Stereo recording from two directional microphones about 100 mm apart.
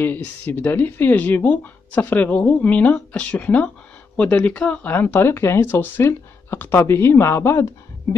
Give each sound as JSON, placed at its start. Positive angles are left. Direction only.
{"t": 0.0, "sound": "speech", "side_deg": 20}